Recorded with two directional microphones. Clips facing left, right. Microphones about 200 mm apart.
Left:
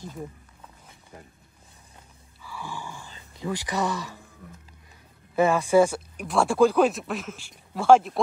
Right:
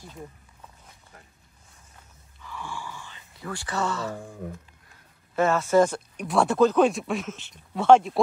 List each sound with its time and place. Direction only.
2.4 s a sound: 15° left (ahead or behind)
3.3 s speech: 15° left (ahead or behind)
5.3 s speech: 15° left (ahead or behind)